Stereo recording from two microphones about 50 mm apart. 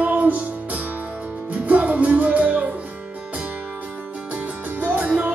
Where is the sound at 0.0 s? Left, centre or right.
Right.